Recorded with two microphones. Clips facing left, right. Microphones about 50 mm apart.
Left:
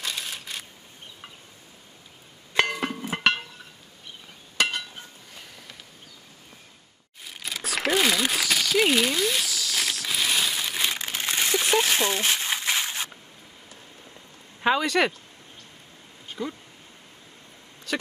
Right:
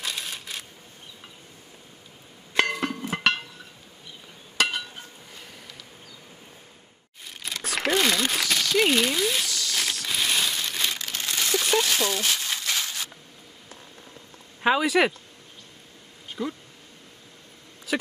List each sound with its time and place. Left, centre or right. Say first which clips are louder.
0.0 s typewriter: even; centre
2.5 s music: even; centre
4.6 s chink: even; centre
7.2 s a sound: even; centre
11.9 s crumpling: left 1 dB; left
14.6 s speech: right 1 dB; centre
16.3 s a sound: right 1 dB; centre
17.9 s vehicle: right 2 dB; centre